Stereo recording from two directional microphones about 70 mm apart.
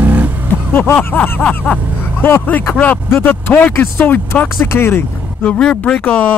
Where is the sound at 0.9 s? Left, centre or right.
Left.